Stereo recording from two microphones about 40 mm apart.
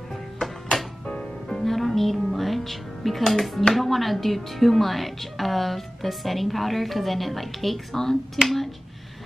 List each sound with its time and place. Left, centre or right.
0.1 s music: centre
1.0 s music: left
1.6 s music: centre
3.7 s speech: centre